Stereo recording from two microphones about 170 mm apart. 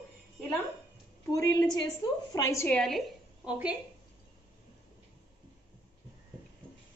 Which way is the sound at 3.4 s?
10° right (ahead or behind).